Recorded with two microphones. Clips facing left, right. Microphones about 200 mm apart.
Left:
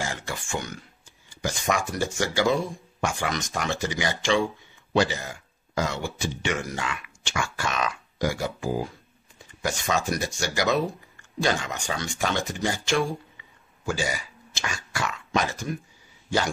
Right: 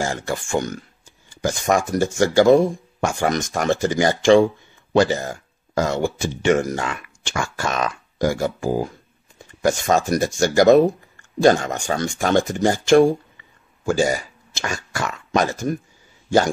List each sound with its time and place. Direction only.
0.0 s speech: 45° right (ahead or behind)